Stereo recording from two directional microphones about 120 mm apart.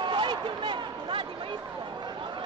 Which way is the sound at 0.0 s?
40° right (ahead or behind).